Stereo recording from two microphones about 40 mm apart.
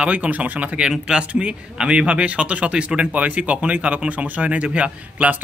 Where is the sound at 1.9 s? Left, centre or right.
Right.